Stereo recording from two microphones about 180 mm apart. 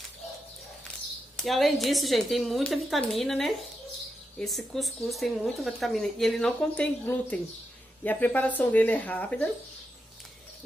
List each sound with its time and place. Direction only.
1.3 s speech: centre (ahead or behind)